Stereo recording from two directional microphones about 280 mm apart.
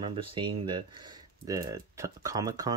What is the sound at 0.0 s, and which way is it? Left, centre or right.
Speech, centre.